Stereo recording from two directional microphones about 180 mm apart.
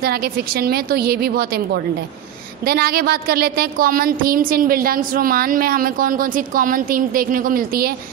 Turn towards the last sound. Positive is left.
turn(degrees=-55)  # may be behind; listen again after turning